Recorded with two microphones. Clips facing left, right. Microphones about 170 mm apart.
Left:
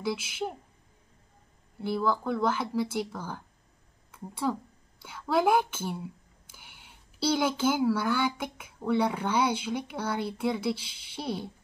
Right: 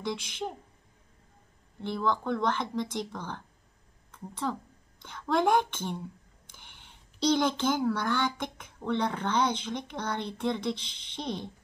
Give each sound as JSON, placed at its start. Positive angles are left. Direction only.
{"t": 0.0, "sound": "a woman's voice", "side_deg": 5}
{"t": 1.8, "sound": "a woman's voice", "side_deg": 5}